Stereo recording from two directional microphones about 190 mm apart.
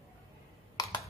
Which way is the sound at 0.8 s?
20° left (ahead or behind).